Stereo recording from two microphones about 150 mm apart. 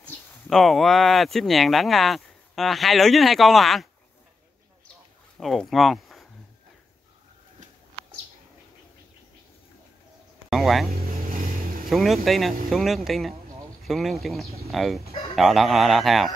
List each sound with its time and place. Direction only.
0.5 s speech: centre (ahead or behind)
5.4 s speech: centre (ahead or behind)
10.5 s speech: centre (ahead or behind)
11.1 s vehicle: 75° right (ahead or behind)
11.9 s speech: centre (ahead or behind)